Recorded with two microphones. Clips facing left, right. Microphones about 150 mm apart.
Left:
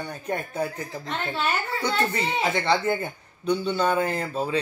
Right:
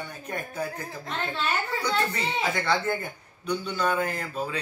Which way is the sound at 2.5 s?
20° left (ahead or behind).